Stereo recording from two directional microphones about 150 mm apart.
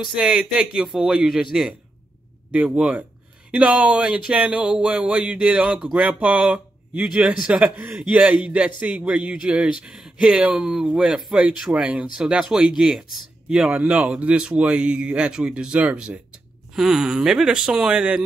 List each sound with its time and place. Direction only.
0.0 s a man's voice: 5° right (ahead or behind)